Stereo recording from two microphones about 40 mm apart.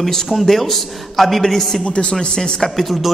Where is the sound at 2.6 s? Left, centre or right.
Centre.